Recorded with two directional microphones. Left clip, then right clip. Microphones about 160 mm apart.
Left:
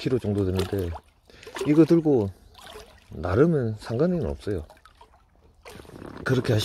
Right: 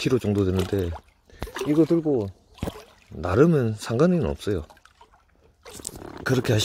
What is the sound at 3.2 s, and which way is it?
Speech, 15° right (ahead or behind).